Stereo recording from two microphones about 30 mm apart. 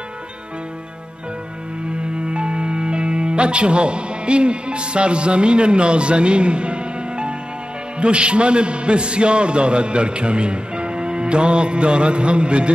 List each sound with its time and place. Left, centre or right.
2.2 s music: right
8.0 s a man's voice: right